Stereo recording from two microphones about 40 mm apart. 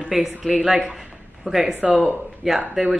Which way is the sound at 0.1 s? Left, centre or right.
Centre.